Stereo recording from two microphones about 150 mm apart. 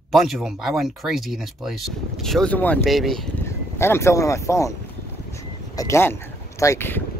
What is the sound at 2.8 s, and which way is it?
Speech, centre (ahead or behind).